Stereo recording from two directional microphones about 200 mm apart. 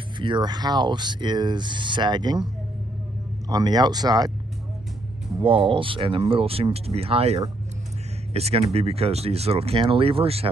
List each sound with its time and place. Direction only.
0.2 s speech: 20° right (ahead or behind)
3.4 s speech: 20° right (ahead or behind)
5.4 s speech: 25° right (ahead or behind)